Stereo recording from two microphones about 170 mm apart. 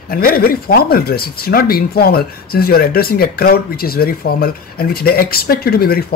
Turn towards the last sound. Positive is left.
turn(degrees=65)  # may be behind; listen again after turning